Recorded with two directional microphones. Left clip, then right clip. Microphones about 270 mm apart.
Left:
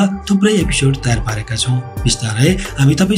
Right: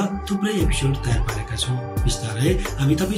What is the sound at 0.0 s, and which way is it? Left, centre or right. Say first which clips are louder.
Speech: left 9 dB; left.